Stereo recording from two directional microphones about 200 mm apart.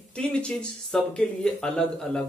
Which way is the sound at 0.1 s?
5° left (ahead or behind).